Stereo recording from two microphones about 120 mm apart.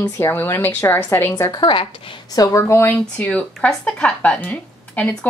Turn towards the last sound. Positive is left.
turn(degrees=10)  # may be behind; listen again after turning